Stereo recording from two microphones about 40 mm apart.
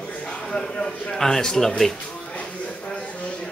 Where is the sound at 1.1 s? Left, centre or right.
Centre.